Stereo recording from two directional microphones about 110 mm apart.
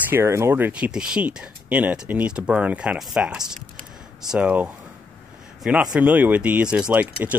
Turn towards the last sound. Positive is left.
turn(degrees=-15)  # may be behind; listen again after turning